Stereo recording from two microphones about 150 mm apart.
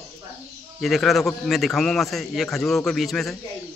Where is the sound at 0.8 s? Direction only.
Centre (ahead or behind).